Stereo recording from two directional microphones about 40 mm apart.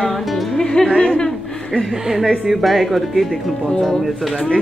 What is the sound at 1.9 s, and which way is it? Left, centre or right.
A woman's voice, centre.